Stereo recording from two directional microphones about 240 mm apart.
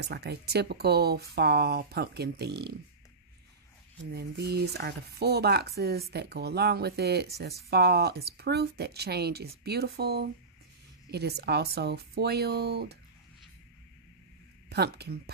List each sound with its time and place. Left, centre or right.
0.0 s speech: right
4.1 s speech: right
14.7 s speech: right